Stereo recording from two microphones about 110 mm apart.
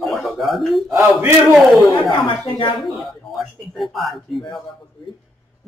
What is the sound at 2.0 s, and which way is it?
Speech, 50° left (ahead or behind).